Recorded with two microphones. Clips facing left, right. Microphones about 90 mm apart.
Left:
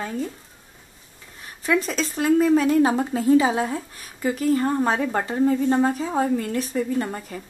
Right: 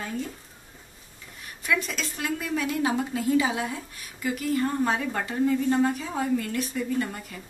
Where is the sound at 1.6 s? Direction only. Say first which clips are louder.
Left 6 dB; 35° left (ahead or behind).